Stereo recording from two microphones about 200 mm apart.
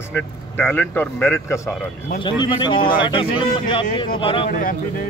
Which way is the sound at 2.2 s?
25° left (ahead or behind).